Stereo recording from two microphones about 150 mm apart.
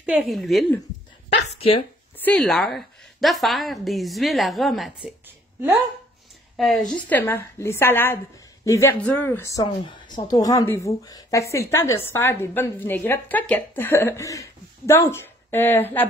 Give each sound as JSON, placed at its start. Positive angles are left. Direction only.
{"t": 0.0, "sound": "a woman's voice", "side_deg": -5}
{"t": 1.3, "sound": "speech", "side_deg": 40}
{"t": 2.1, "sound": "a woman's voice", "side_deg": 5}
{"t": 6.5, "sound": "a woman's voice", "side_deg": 0}